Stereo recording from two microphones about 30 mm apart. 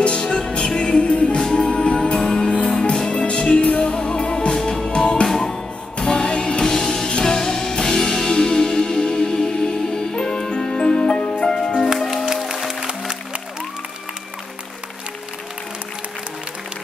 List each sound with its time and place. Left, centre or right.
0.0 s music: left
4.6 s music: centre
4.8 s music: left
5.2 s music: centre
5.9 s music: left
6.6 s music: centre